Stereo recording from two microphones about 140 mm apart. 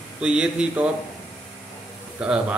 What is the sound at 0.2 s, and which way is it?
Speech, 5° right (ahead or behind).